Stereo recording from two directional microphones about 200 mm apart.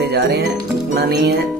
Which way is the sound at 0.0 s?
55° right (ahead or behind).